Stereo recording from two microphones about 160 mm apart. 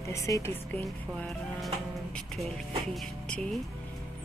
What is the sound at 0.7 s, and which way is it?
Speech, 5° left (ahead or behind).